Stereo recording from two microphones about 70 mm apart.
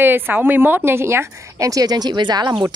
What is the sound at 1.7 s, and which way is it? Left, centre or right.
Speech, right.